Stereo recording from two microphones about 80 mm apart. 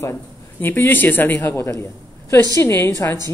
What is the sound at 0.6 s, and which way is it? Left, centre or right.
A woman's voice, left.